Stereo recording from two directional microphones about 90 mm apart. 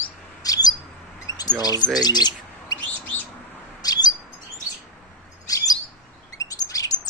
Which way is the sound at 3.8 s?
45° left (ahead or behind).